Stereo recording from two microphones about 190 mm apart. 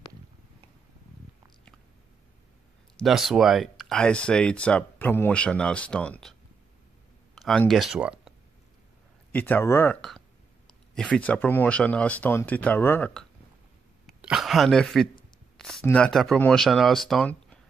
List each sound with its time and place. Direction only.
3.0 s speech: centre (ahead or behind)
7.3 s speech: centre (ahead or behind)
9.3 s speech: 10° left (ahead or behind)